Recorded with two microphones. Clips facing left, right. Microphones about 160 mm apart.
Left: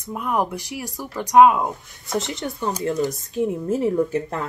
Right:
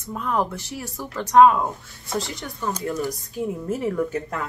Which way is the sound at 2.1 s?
20° left (ahead or behind).